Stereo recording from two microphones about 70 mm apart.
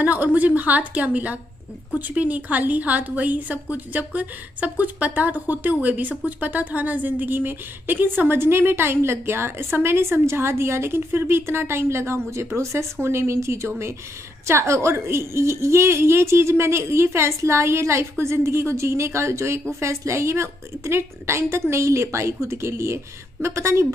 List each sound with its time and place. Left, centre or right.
0.0 s a woman's voice: right